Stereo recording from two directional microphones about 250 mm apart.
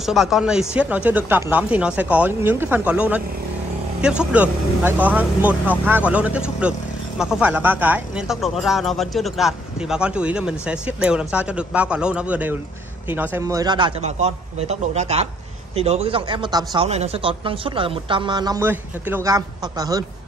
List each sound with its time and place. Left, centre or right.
0.0 s speech: centre